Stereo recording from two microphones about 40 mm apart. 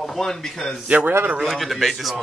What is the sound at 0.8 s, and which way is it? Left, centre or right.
Speech, right.